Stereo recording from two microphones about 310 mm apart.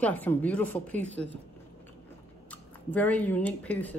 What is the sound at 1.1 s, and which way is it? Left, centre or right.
Speech, right.